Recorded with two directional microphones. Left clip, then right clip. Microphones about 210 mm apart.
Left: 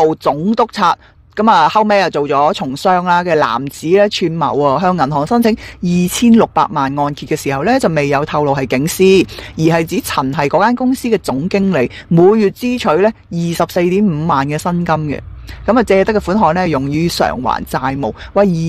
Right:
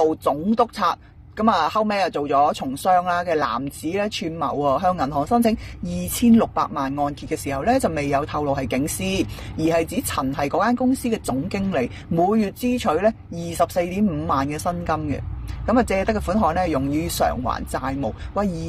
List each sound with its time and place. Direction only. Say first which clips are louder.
0.0 s speech: left 7 dB; 50° left (ahead or behind)